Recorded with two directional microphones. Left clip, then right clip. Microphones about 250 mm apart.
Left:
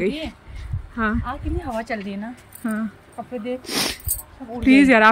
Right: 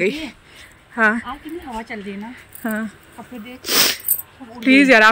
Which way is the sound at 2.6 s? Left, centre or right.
Centre.